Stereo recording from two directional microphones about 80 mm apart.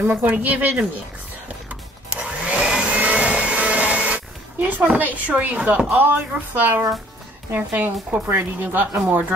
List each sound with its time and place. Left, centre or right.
0.0 s speech: right
1.7 s vacuum cleaner: centre
5.1 s speech: centre